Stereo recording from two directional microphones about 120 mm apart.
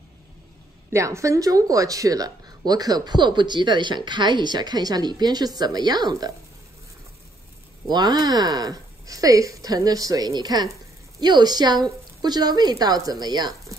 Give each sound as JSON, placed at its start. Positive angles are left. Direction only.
{"t": 0.8, "sound": "speech", "side_deg": -25}
{"t": 7.9, "sound": "speech", "side_deg": -35}